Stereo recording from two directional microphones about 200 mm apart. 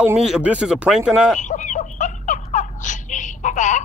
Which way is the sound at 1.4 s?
40° left (ahead or behind).